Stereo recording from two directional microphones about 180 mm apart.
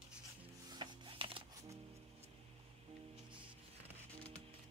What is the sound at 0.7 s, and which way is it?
Music, 25° right (ahead or behind).